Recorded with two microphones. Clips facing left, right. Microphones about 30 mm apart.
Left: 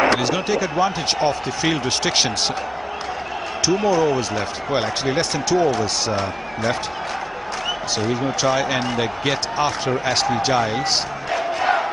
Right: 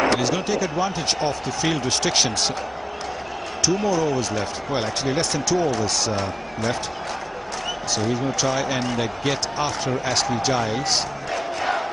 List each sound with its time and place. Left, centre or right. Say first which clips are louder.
0.0 s speech: left 2 dB; centre
3.6 s speech: left 3 dB; centre
8.0 s speech: left 2 dB; centre